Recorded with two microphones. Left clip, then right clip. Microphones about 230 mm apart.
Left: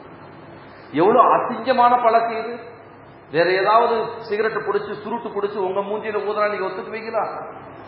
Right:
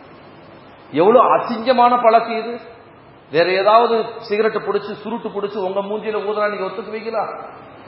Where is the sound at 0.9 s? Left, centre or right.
Right.